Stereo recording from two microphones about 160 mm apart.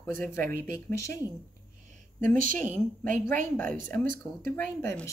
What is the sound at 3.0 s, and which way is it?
Speech, 15° left (ahead or behind).